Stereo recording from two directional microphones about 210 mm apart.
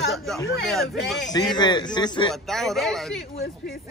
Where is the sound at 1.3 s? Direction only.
20° left (ahead or behind).